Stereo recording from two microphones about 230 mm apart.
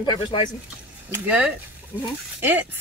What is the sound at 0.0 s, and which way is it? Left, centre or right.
Speech, left.